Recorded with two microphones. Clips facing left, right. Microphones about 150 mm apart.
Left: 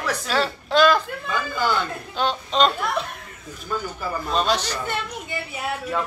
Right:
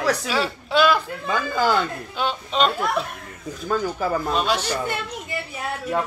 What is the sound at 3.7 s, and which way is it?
Speech, 60° right (ahead or behind).